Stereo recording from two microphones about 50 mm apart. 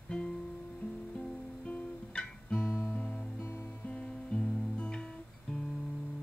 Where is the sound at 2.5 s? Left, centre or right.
Left.